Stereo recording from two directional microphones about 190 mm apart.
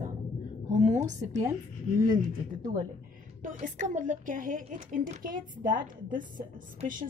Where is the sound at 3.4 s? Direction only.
40° right (ahead or behind).